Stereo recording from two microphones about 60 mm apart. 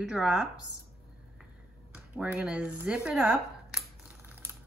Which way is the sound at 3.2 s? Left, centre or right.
Centre.